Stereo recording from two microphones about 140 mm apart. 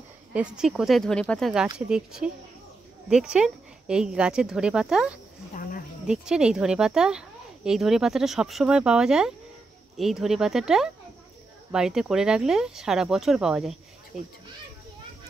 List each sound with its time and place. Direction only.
0.3 s speech: 5° right (ahead or behind)
1.9 s speech: 5° right (ahead or behind)
5.5 s cricket: 85° left
6.0 s speech: 5° right (ahead or behind)